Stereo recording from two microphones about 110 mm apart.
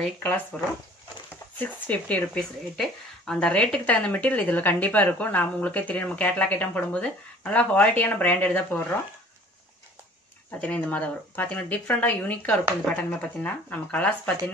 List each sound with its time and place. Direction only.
0.0 s speech: 15° left (ahead or behind)
1.6 s speech: 15° left (ahead or behind)
10.6 s speech: 10° left (ahead or behind)